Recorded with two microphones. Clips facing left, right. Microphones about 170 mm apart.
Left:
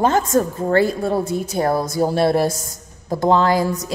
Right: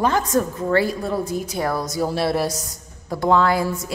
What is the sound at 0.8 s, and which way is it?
Speech, 25° left (ahead or behind).